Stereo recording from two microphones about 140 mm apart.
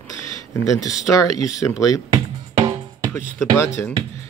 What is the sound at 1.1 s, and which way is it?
Speech, 25° left (ahead or behind).